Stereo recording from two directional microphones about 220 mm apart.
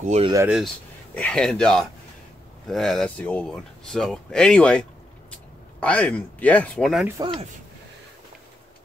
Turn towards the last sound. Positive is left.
turn(degrees=-25)  # may be behind; listen again after turning